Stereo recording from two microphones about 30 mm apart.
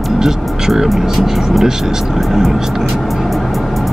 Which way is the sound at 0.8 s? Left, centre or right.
Centre.